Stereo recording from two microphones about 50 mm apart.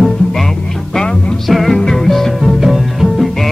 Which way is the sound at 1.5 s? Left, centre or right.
Centre.